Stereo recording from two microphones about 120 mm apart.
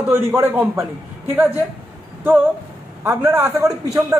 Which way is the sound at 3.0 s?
20° right (ahead or behind).